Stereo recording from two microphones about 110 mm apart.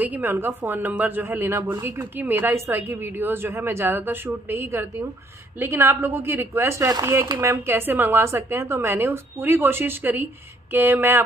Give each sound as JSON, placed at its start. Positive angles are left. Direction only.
{"t": 0.0, "sound": "speech", "side_deg": -15}